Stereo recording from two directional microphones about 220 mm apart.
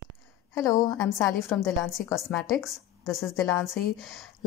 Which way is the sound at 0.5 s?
15° left (ahead or behind).